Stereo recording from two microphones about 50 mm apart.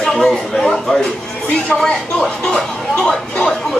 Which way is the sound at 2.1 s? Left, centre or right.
Centre.